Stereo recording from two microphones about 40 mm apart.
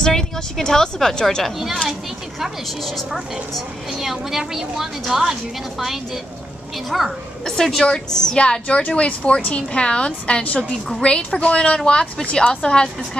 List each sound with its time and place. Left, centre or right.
0.0 s a woman's voice: centre
4.0 s a woman's voice: centre; by 12.9 s left